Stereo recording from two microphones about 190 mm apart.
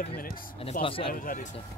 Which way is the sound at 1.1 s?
45° left (ahead or behind).